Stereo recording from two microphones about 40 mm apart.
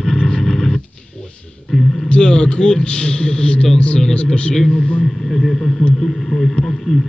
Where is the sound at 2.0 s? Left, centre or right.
Left.